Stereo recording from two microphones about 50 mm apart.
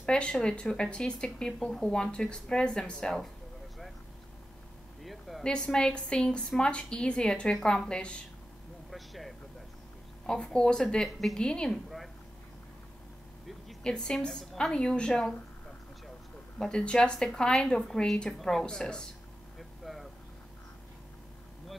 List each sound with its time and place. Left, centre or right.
0.0 s speech: centre
5.0 s a sound: centre
5.4 s speech: centre
8.9 s vehicle: centre
10.2 s speech: centre
11.1 s a woman's voice: centre
11.3 s speech: centre
13.8 s speech: centre
14.7 s speech: centre
16.5 s speech: centre
19.8 s vehicle: centre